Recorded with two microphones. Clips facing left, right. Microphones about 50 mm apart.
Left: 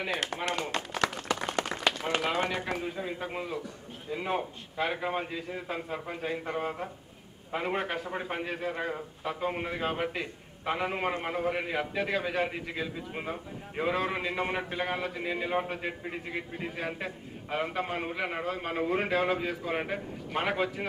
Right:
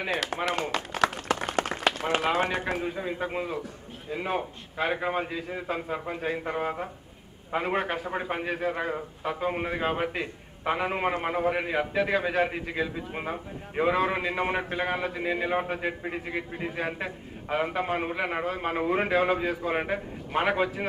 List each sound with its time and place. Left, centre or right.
0.3 s a man's voice: centre
1.4 s a sound: right
2.0 s a man's voice: centre